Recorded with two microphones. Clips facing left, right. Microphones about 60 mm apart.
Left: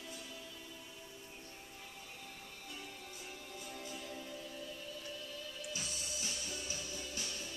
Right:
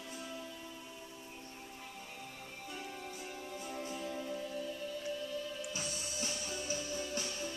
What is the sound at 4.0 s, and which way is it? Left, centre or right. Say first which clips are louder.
Music: right 6 dB; right.